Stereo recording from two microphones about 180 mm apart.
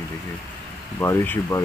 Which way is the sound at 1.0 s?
15° left (ahead or behind).